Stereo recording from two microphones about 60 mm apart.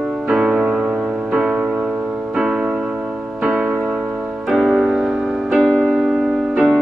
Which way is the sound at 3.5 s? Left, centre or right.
Right.